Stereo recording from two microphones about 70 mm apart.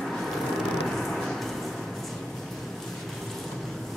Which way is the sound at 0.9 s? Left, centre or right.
Centre.